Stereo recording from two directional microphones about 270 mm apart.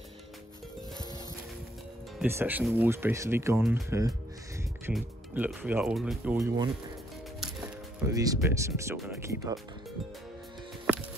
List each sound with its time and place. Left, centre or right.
2.1 s speech: centre
6.3 s speech: centre
8.0 s speech: centre